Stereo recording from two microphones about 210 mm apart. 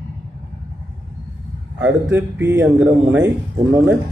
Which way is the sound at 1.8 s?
15° right (ahead or behind).